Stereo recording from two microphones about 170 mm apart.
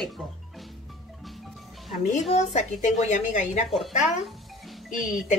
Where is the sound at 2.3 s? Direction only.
40° left (ahead or behind).